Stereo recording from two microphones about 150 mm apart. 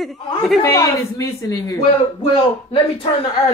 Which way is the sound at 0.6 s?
20° left (ahead or behind).